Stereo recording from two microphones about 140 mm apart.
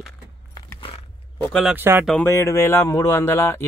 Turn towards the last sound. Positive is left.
turn(degrees=20)  # may be behind; listen again after turning